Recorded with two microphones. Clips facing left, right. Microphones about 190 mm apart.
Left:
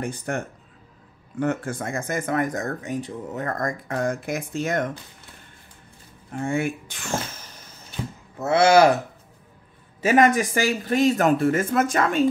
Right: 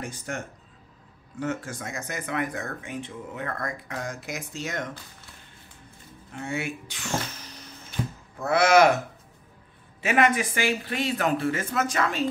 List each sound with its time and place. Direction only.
0.0 s speech: 55° left (ahead or behind)
1.4 s speech: 55° left (ahead or behind)
6.3 s speech: 50° left (ahead or behind)
8.4 s speech: 25° left (ahead or behind)
10.0 s speech: 40° left (ahead or behind)